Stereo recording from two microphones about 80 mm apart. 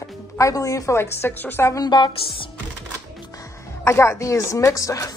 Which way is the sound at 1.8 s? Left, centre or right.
Left.